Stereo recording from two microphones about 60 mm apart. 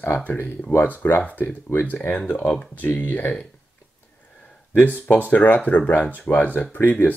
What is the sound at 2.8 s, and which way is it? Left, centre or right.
Speech, left.